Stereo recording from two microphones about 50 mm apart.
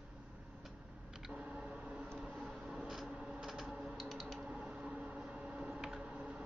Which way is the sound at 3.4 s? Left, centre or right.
Centre.